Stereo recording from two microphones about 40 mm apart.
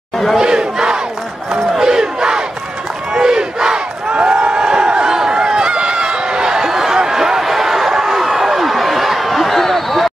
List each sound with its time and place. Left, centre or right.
0.4 s battle cry: centre
1.5 s crowd: centre
7.0 s a sound: centre